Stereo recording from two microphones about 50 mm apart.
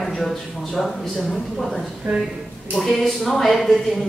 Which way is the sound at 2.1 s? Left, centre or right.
Right.